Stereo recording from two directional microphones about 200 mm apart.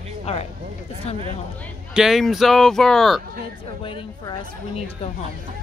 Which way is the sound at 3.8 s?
25° left (ahead or behind).